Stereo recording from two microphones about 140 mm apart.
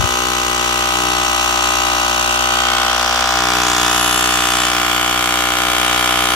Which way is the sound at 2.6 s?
15° left (ahead or behind).